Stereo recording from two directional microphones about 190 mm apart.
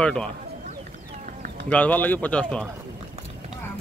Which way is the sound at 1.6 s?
10° left (ahead or behind).